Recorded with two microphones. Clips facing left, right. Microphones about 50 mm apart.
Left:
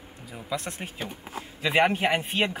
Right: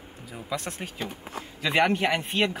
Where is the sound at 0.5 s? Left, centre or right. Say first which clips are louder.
Even; centre.